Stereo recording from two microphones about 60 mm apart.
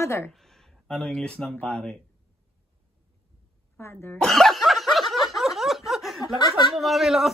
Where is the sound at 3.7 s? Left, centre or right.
Left.